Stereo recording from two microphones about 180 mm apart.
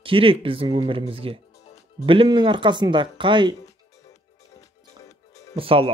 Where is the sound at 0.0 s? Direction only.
30° right (ahead or behind).